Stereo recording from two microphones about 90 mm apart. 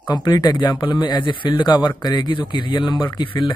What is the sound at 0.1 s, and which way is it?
Speech, 50° left (ahead or behind).